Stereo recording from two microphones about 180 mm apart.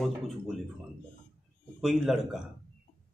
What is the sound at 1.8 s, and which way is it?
Speech, centre (ahead or behind).